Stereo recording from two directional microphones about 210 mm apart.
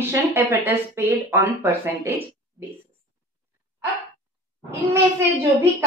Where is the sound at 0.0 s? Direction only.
10° right (ahead or behind).